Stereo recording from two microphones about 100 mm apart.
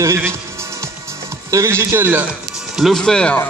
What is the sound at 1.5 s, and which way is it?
Speech, 30° right (ahead or behind).